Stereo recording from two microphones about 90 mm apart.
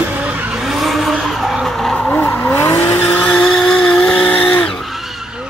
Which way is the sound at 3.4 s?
5° left (ahead or behind).